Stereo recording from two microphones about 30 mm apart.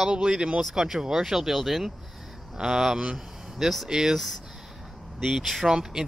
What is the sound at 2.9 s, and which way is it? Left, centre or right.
Speech, right.